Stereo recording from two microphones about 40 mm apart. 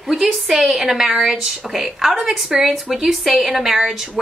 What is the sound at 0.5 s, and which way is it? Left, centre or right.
A woman's voice, centre.